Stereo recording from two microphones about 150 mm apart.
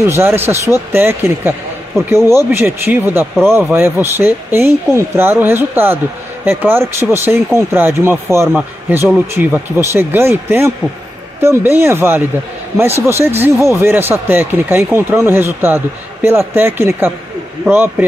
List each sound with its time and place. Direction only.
0.0 s a man's voice: 15° right (ahead or behind)